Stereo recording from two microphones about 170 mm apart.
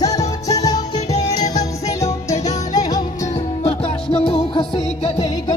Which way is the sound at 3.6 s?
35° left (ahead or behind).